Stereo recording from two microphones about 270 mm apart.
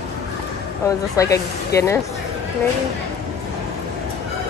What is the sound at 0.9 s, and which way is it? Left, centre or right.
Speech, centre.